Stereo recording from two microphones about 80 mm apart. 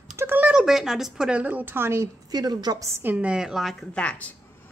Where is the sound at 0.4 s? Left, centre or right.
Centre; by 2.0 s right.